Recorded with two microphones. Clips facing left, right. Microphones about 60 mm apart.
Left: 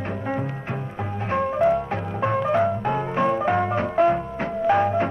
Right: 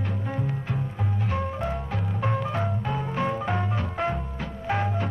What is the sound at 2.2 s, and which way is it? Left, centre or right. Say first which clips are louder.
Music: left 8 dB; left.